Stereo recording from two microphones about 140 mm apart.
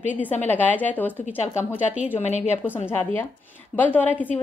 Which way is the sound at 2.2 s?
55° left (ahead or behind).